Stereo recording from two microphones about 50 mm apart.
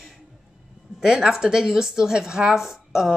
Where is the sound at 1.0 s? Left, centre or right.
Centre.